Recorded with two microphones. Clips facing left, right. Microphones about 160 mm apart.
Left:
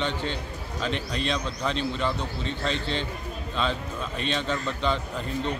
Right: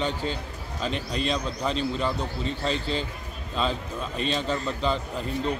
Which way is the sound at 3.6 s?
5° right (ahead or behind).